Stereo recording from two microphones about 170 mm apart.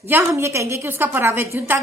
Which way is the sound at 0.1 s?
15° right (ahead or behind).